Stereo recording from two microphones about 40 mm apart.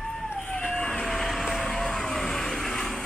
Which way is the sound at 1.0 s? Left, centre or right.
Centre.